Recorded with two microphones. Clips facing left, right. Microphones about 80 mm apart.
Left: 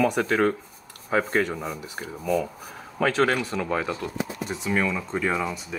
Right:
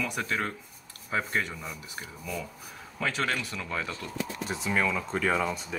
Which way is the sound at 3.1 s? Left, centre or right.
Left.